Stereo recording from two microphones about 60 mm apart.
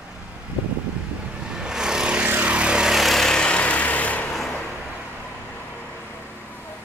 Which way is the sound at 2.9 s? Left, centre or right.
Centre.